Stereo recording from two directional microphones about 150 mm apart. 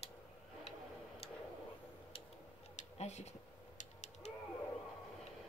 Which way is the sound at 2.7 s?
50° left (ahead or behind).